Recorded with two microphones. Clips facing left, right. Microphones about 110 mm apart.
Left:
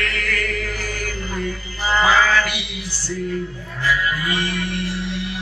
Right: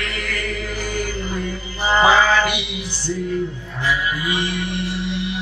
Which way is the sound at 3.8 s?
20° right (ahead or behind).